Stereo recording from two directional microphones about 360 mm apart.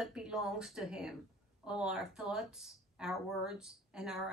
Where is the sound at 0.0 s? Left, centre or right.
Centre.